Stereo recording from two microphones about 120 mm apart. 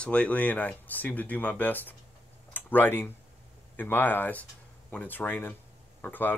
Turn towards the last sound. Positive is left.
turn(degrees=15)  # may be behind; listen again after turning